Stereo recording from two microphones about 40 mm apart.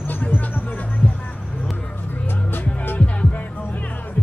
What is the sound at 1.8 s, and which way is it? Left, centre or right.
Music, left.